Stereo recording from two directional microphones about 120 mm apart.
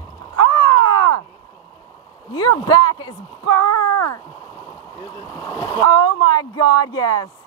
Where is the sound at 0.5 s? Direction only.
35° left (ahead or behind).